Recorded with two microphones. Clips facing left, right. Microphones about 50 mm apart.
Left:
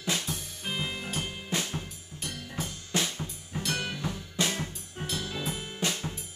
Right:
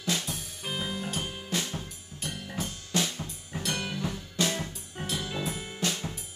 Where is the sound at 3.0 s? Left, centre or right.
Centre.